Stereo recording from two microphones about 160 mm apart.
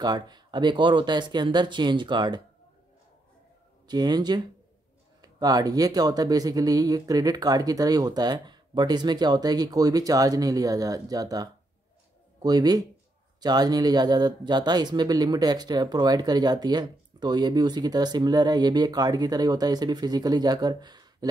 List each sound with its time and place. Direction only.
0.0 s speech: 25° right (ahead or behind)
3.8 s speech: 25° right (ahead or behind)